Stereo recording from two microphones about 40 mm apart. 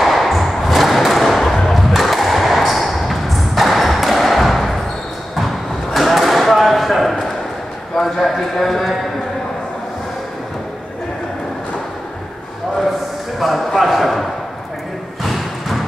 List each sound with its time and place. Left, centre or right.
0.0 s thump: centre
5.9 s basketball bounce: centre
7.9 s clip-clop: centre
13.4 s a sound: centre
15.2 s thump: centre